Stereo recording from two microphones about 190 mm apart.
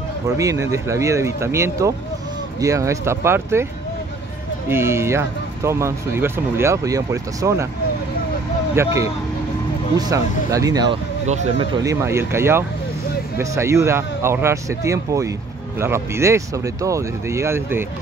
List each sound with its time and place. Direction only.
0.4 s speech: 15° right (ahead or behind)
4.6 s speech: 15° right (ahead or behind)
8.7 s speech: 15° right (ahead or behind)
11.2 s speech: 40° right (ahead or behind)
11.8 s speech: 15° right (ahead or behind)